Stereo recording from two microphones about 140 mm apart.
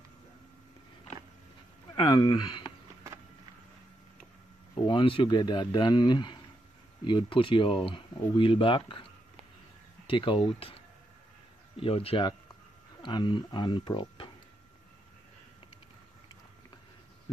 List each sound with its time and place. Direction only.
2.0 s speech: 30° left (ahead or behind)
4.8 s speech: 35° left (ahead or behind)
10.0 s speech: 40° left (ahead or behind)
11.7 s speech: 40° left (ahead or behind)